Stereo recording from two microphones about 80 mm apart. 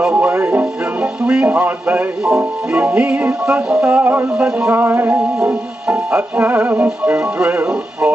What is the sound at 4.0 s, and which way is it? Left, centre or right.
Speech, right.